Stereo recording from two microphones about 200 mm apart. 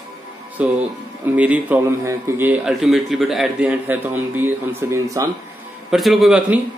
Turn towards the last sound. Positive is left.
turn(degrees=-5)  # may be behind; listen again after turning